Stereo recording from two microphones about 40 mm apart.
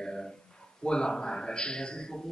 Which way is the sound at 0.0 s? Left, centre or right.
Centre.